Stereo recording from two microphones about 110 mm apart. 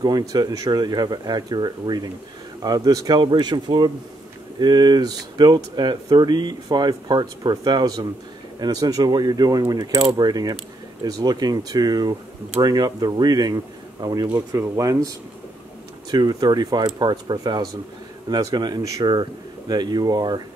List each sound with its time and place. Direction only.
0.0 s speech: 40° right (ahead or behind)